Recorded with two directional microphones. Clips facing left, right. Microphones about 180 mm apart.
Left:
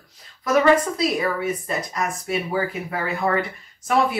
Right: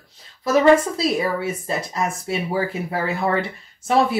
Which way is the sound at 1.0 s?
30° right (ahead or behind).